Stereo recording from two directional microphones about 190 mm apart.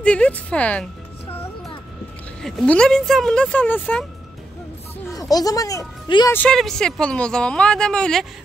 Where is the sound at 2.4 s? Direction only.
Centre (ahead or behind).